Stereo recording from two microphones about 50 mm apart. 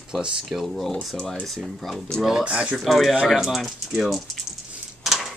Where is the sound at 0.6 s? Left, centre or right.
Centre.